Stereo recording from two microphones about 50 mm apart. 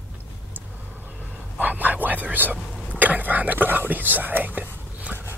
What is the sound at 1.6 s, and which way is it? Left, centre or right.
Whispering, right.